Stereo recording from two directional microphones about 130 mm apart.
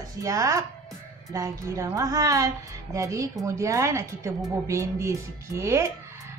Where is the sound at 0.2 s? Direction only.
25° right (ahead or behind).